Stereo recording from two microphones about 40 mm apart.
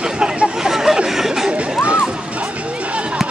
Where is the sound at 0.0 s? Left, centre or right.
Centre.